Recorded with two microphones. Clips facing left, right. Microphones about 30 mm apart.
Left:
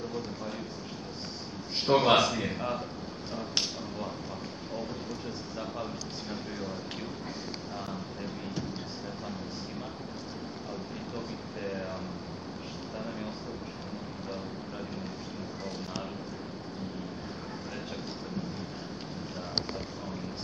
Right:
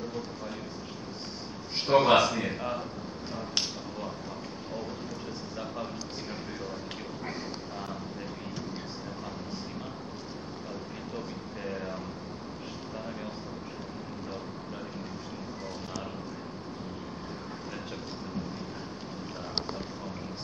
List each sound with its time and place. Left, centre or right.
0.1 s a man's voice: centre
1.9 s a man's voice: centre
11.1 s a man's voice: centre